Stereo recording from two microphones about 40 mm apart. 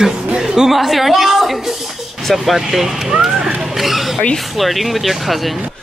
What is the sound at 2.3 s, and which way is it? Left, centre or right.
Speech, centre.